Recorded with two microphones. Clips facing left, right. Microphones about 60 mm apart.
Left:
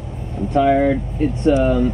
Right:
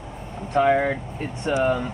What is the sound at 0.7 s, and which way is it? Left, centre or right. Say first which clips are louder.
Speech: left 5 dB; centre.